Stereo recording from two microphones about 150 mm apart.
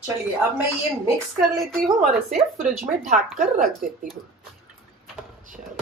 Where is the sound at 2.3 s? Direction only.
50° right (ahead or behind).